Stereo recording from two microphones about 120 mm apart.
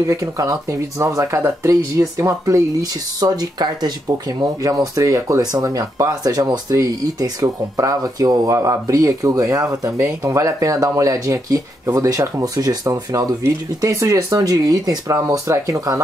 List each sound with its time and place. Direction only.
0.0 s speech: 25° right (ahead or behind)